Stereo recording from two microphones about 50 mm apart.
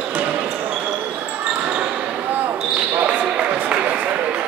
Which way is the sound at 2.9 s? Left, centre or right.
Right.